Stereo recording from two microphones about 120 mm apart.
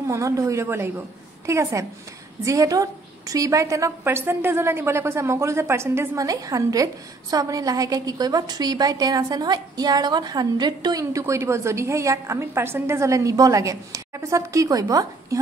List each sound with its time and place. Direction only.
0.0 s a woman's voice: 25° right (ahead or behind)